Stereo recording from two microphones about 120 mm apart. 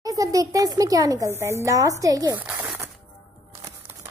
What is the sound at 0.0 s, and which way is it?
A child's voice, 30° right (ahead or behind).